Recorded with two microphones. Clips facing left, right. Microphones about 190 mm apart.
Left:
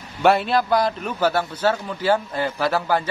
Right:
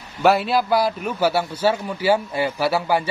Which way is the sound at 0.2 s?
Centre (ahead or behind).